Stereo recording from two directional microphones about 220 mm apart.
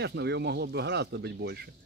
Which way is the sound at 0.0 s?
50° right (ahead or behind).